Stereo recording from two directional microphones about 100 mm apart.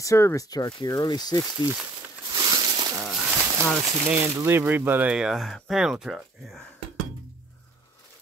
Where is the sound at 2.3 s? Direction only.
45° right (ahead or behind).